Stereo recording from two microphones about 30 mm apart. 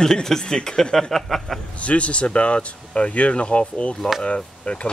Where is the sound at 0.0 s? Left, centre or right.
Centre.